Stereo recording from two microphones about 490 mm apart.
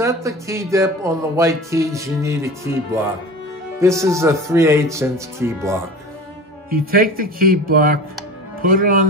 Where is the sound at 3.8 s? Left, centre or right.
Centre.